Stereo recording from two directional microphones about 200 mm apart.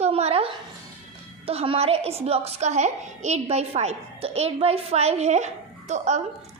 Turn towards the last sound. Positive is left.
turn(degrees=-35)  # may be behind; listen again after turning